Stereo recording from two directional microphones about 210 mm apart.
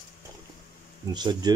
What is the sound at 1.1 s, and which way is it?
Speech, 20° right (ahead or behind).